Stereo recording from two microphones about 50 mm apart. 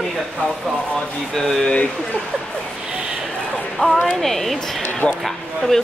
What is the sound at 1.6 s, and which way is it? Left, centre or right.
Speech, left.